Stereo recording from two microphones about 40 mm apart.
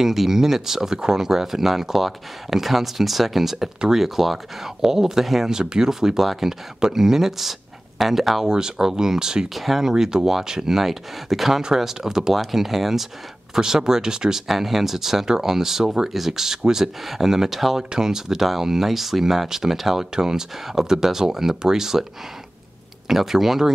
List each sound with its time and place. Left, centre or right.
0.0 s speech: centre
5.5 s speech: centre
8.5 s speech: centre
9.5 s speech: centre
23.0 s speech: centre